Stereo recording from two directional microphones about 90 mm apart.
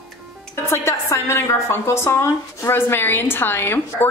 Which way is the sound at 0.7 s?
30° left (ahead or behind).